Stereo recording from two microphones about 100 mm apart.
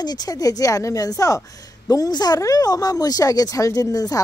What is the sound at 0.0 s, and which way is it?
Speech, 40° left (ahead or behind).